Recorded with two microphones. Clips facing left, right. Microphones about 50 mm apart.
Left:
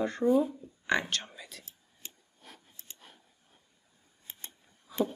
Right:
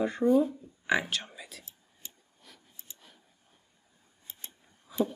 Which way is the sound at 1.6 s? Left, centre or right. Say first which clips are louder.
Left 1 dB; left.